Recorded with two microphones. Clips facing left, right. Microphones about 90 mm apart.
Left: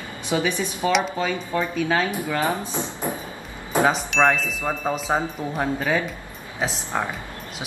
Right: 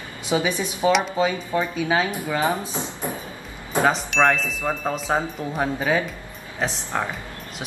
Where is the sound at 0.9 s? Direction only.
Centre (ahead or behind).